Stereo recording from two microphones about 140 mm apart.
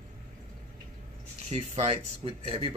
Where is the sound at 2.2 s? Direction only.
45° right (ahead or behind).